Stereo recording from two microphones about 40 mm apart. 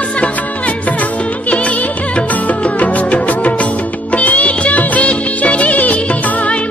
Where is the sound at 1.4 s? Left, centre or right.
Left.